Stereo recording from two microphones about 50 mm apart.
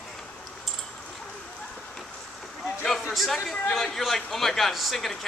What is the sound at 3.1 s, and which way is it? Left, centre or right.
Chatter, centre.